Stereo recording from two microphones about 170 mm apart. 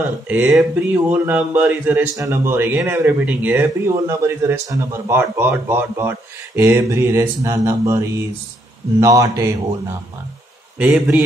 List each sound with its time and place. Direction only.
0.3 s a man's voice: 5° right (ahead or behind)
10.8 s speech: 10° right (ahead or behind)